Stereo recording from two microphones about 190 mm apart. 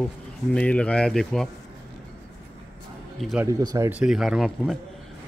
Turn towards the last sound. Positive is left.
turn(degrees=0)  # may be behind; listen again after turning